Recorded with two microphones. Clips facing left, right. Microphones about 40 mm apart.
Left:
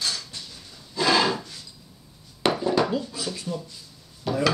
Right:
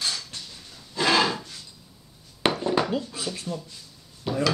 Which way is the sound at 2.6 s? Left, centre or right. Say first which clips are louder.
Left 1 dB; centre.